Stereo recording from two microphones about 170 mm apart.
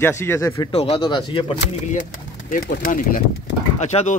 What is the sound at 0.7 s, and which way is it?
Speech, 35° left (ahead or behind).